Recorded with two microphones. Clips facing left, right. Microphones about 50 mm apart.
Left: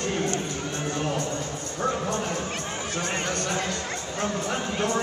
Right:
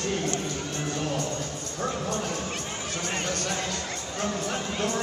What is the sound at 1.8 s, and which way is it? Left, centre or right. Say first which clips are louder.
Speech: left 3 dB; left.